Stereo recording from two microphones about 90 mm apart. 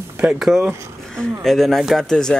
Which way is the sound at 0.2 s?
10° right (ahead or behind).